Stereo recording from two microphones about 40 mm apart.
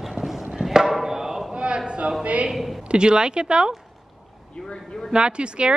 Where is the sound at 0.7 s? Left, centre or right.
Centre.